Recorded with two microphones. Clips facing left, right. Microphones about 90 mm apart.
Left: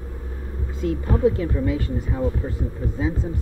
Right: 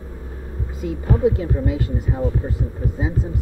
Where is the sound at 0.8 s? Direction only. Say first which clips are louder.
Right 1 dB; 20° right (ahead or behind).